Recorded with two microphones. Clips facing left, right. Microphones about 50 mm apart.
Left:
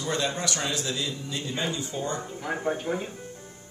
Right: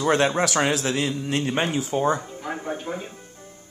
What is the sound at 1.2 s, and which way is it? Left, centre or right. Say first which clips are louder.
Speech: right 7 dB; right.